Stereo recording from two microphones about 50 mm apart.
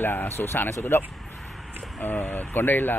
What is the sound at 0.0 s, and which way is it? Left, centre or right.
Speech, left.